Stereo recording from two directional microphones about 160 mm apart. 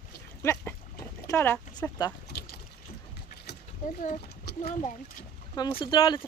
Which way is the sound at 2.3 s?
90° left.